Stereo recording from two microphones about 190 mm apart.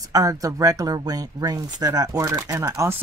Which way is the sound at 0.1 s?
20° right (ahead or behind).